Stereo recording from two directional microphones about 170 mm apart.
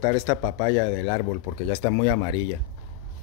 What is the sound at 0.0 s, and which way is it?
Speech, 30° left (ahead or behind).